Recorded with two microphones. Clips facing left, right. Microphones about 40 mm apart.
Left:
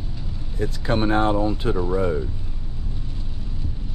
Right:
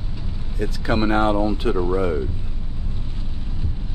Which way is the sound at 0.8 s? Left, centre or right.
Right.